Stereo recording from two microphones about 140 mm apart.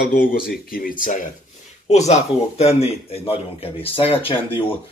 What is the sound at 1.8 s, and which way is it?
Speech, 55° left (ahead or behind).